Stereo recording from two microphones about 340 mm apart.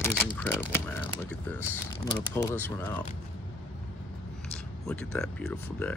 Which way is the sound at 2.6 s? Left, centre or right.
Centre.